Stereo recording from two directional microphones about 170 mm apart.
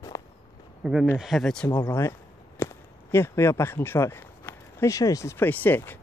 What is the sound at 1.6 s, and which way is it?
Speech, 15° left (ahead or behind).